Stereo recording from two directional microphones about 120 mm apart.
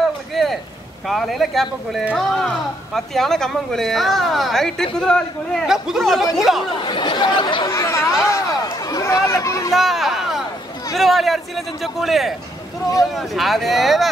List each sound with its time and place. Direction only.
0.3 s a sound: centre (ahead or behind)
1.0 s speech: centre (ahead or behind)
6.8 s chatter: 40° left (ahead or behind)
7.6 s chatter: 25° left (ahead or behind)
8.8 s speech: 30° left (ahead or behind)
9.8 s a sound: centre (ahead or behind)
11.0 s speech: centre (ahead or behind)